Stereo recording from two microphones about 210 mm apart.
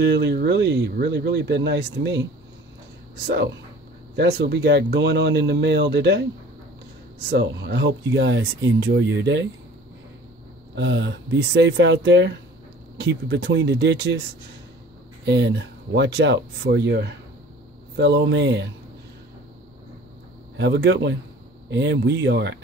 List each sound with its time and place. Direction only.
0.0 s speech: 55° right (ahead or behind)
4.1 s speech: 50° right (ahead or behind)
7.2 s speech: 55° right (ahead or behind)
10.7 s speech: 60° right (ahead or behind)
15.2 s speech: 60° right (ahead or behind)
20.5 s speech: 60° right (ahead or behind)